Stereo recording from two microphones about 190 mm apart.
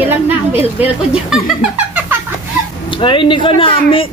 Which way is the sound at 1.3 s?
5° right (ahead or behind).